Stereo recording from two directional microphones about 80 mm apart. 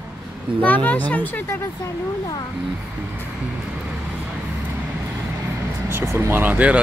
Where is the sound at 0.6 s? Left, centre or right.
Centre.